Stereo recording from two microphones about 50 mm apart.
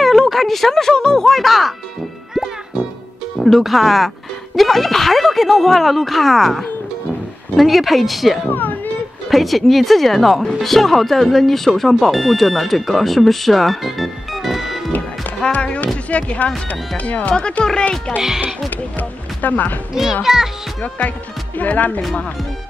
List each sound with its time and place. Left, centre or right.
0.0 s a sound: centre
0.9 s speech: centre
2.3 s music: centre
3.3 s speech: centre
8.5 s a child's voice: left
9.3 s speech: centre
15.5 s music: left
16.1 s speech: left
18.7 s speech: left
19.9 s a child's voice: centre
21.5 s speech: left